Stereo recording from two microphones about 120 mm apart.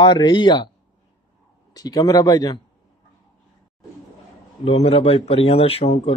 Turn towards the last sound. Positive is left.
turn(degrees=55)  # may be behind; listen again after turning